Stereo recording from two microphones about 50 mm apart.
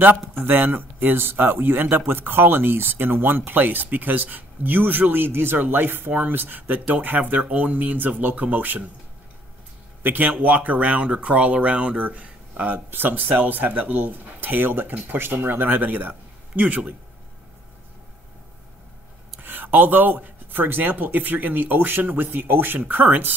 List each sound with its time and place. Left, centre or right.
0.4 s a man's voice: right
10.0 s speech: right
19.4 s speech: right